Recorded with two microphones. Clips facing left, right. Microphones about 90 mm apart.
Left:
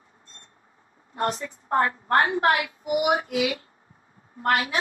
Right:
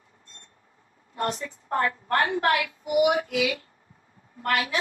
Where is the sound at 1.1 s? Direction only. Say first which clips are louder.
Left 2 dB; 35° left (ahead or behind).